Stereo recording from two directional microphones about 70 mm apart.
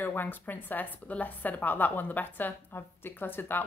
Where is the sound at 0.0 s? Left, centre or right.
Left.